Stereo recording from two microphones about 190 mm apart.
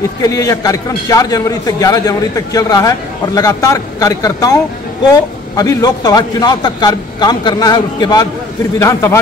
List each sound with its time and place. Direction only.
0.2 s a man's voice: 15° left (ahead or behind)